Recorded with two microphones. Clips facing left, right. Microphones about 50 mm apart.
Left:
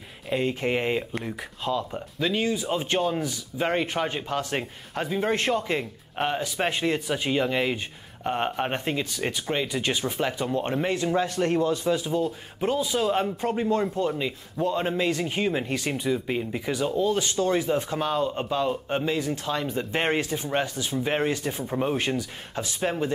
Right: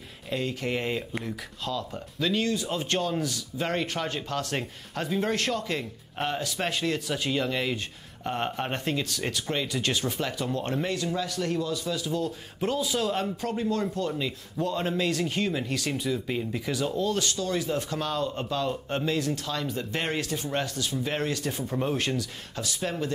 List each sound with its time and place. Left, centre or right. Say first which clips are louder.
0.3 s speech: left 4 dB; left
12.2 s speech: left 3 dB; centre
17.3 s speech: left 5 dB; left